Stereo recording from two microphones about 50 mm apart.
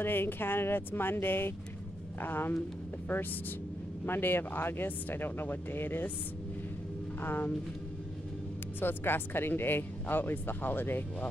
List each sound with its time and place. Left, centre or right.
0.0 s speech: left
4.0 s speech: left
7.2 s speech: left
8.7 s speech: left